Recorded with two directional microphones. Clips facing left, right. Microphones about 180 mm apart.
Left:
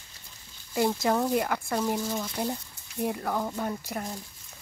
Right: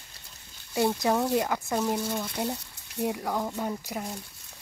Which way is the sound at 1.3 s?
15° right (ahead or behind).